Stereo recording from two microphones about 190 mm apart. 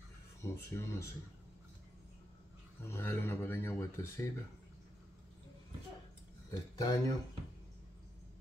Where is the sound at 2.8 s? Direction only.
15° left (ahead or behind).